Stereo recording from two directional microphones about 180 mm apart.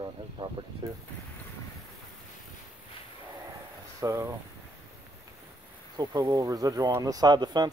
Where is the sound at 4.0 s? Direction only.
15° right (ahead or behind).